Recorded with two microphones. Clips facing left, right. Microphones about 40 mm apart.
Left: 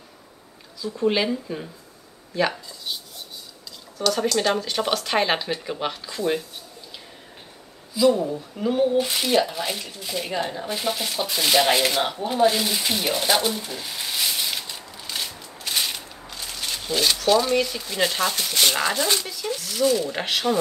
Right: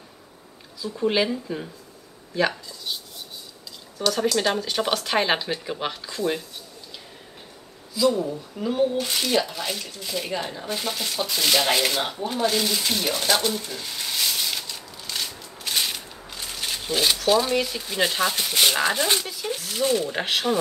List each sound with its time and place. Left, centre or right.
0.7 s speech: centre
4.0 s speech: centre
7.9 s speech: centre; by 20.1 s right
20.1 s speech: centre